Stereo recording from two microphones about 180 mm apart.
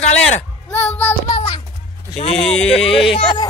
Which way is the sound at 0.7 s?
10° left (ahead or behind).